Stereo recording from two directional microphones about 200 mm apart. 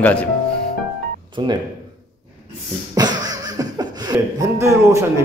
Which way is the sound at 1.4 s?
25° right (ahead or behind).